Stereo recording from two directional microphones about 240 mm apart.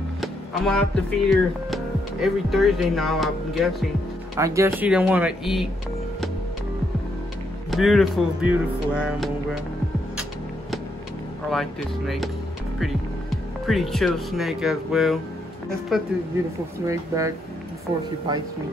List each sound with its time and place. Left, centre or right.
0.2 s speech: centre
4.4 s speech: centre
7.7 s speech: centre
13.7 s speech: centre
16.8 s speech: centre